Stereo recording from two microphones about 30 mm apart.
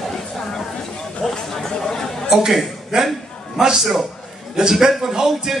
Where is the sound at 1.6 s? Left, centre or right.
Centre.